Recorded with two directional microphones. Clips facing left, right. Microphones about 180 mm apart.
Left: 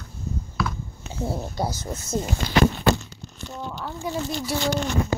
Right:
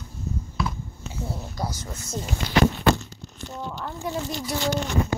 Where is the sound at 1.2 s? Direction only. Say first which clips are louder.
Left 5 dB; 30° left (ahead or behind).